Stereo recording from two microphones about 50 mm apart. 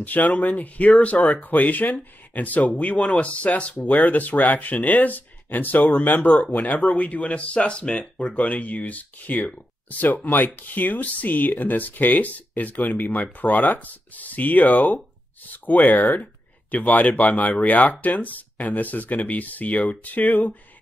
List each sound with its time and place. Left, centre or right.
0.0 s speech: left; by 8.4 s centre
8.4 s speech: left